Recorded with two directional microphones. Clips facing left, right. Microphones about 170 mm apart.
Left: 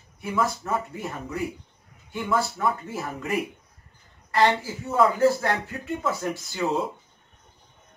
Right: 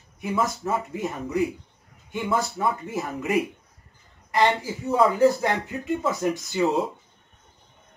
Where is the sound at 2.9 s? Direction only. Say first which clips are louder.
Right 4 dB; 20° right (ahead or behind).